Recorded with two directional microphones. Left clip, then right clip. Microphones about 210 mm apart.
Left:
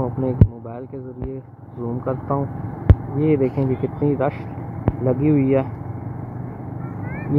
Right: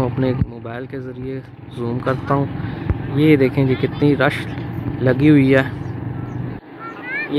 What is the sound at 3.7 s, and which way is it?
Speech, 60° right (ahead or behind).